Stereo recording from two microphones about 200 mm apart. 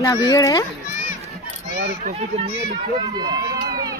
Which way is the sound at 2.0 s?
30° right (ahead or behind).